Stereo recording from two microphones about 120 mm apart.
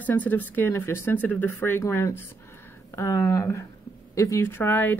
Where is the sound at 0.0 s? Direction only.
15° left (ahead or behind).